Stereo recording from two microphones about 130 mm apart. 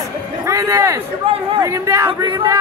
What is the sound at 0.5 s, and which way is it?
A man's voice, 25° right (ahead or behind).